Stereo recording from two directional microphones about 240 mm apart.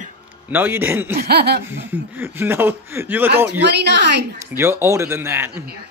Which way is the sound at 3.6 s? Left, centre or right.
Right.